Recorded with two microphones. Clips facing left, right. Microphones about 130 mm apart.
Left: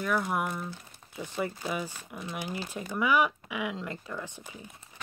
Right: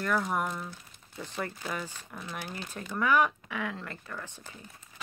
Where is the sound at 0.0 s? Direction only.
5° left (ahead or behind).